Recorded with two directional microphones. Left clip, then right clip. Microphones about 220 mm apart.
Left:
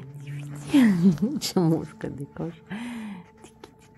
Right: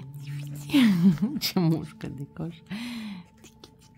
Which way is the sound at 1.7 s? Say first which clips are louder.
Left 4 dB; 30° right (ahead or behind).